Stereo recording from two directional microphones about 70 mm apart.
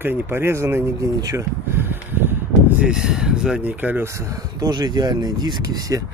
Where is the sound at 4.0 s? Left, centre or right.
Right.